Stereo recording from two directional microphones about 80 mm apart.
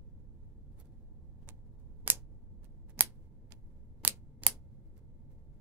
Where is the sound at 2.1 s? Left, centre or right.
Right.